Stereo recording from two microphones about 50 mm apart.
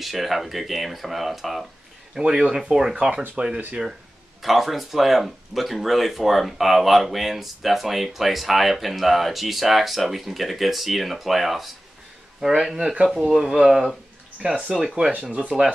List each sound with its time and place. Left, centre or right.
0.0 s speech: centre
2.1 s speech: centre
4.4 s speech: centre
14.4 s speech: right